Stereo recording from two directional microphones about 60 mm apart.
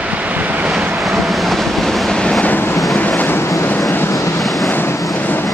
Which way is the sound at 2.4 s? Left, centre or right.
Left.